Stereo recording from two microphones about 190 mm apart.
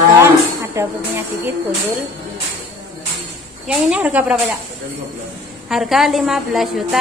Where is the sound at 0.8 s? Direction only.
15° right (ahead or behind).